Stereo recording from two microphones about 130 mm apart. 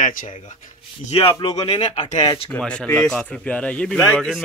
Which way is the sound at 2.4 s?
10° left (ahead or behind).